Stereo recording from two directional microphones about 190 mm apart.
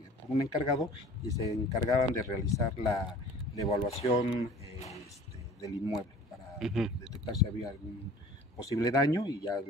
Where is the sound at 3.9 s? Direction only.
35° left (ahead or behind).